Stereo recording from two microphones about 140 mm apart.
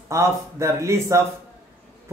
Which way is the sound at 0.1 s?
20° right (ahead or behind).